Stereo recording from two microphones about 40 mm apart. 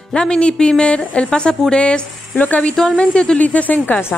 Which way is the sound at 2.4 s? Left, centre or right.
Left.